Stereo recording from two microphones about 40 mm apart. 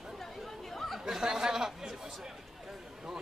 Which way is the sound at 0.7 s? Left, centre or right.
Centre.